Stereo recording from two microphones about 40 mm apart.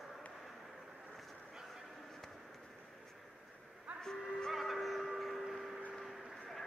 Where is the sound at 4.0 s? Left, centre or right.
Centre.